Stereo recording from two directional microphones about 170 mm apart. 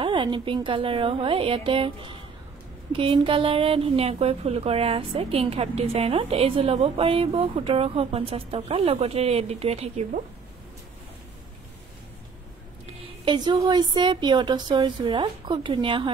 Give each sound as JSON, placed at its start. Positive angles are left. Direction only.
{"t": 0.0, "sound": "a woman's voice", "side_deg": -30}
{"t": 13.2, "sound": "a woman's voice", "side_deg": -25}